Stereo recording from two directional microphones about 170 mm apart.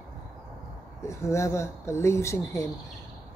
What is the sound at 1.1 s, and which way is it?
Speech, 15° left (ahead or behind).